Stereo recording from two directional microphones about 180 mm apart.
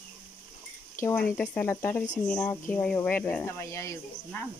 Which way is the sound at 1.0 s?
10° left (ahead or behind).